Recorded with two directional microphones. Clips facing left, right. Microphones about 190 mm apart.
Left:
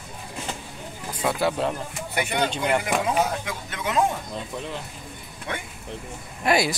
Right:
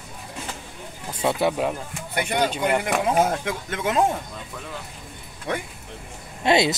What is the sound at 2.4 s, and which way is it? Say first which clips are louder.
Speech: right 1 dB; 5° right (ahead or behind).